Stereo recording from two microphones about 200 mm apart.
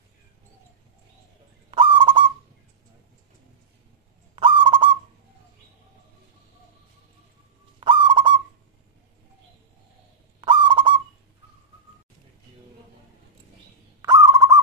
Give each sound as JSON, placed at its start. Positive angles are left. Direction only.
{"t": 1.7, "sound": "owl", "side_deg": -25}
{"t": 4.4, "sound": "owl", "side_deg": -25}
{"t": 7.8, "sound": "owl", "side_deg": -25}
{"t": 10.4, "sound": "owl", "side_deg": -25}
{"t": 14.0, "sound": "owl", "side_deg": -15}